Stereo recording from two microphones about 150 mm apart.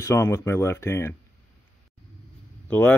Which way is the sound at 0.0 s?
20° left (ahead or behind).